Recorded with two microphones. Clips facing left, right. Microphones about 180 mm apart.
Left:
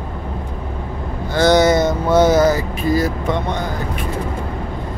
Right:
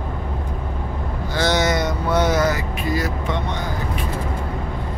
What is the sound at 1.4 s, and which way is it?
Vehicle, 45° left (ahead or behind).